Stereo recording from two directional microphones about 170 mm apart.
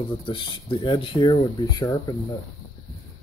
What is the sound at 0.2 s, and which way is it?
Speech, 30° left (ahead or behind).